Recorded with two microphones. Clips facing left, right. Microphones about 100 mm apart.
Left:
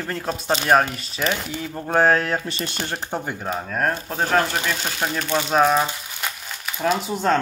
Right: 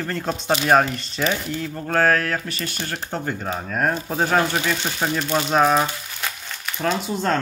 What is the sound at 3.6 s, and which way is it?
Speech, centre (ahead or behind).